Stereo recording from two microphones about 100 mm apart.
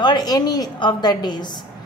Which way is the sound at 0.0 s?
45° left (ahead or behind).